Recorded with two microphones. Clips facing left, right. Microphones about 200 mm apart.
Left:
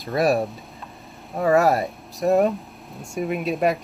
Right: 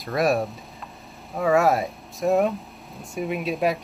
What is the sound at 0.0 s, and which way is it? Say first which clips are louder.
Speech: left 2 dB; centre (ahead or behind).